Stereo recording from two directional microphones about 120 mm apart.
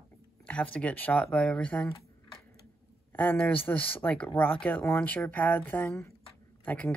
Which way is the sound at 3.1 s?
15° left (ahead or behind).